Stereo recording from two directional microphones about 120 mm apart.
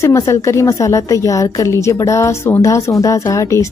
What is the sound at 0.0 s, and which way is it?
A woman's voice, 25° left (ahead or behind).